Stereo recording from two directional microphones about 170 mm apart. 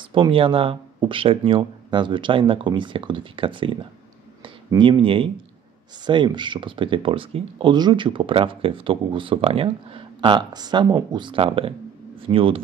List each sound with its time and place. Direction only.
0.0 s speech: 30° right (ahead or behind)